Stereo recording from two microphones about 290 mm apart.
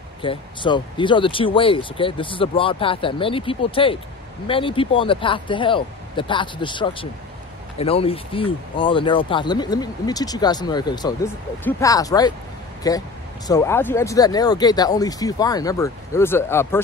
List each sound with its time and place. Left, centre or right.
0.2 s speech: centre